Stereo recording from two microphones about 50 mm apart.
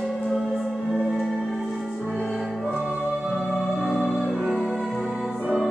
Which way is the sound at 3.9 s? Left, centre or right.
Centre.